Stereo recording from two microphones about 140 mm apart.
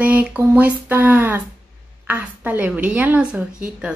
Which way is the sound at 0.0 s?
10° right (ahead or behind).